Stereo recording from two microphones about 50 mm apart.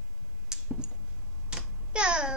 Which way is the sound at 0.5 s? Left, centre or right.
Centre.